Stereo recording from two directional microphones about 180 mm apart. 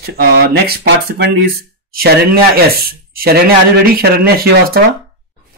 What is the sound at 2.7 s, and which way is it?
Speech, 55° right (ahead or behind).